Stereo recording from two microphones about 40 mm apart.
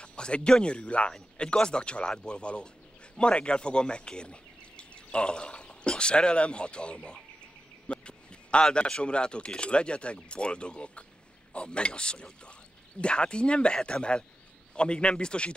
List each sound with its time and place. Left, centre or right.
0.0 s speech: left
7.9 s a sound: left
8.8 s speech: left
14.8 s speech: left